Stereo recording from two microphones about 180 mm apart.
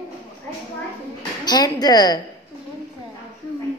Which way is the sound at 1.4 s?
25° left (ahead or behind).